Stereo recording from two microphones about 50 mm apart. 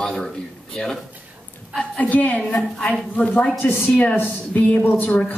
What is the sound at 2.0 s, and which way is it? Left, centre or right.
A woman's voice, left.